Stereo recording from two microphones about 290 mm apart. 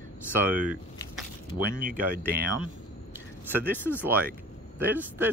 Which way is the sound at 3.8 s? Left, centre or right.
Centre.